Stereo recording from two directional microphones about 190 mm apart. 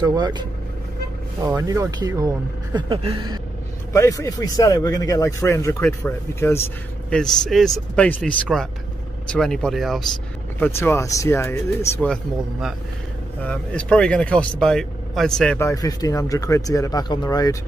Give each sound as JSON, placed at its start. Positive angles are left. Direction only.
{"t": 0.0, "sound": "speech", "side_deg": -25}
{"t": 2.9, "sound": "a sound", "side_deg": -30}
{"t": 3.9, "sound": "a man's voice", "side_deg": 15}
{"t": 10.6, "sound": "a man's voice", "side_deg": 15}
{"t": 15.6, "sound": "a man's voice", "side_deg": 20}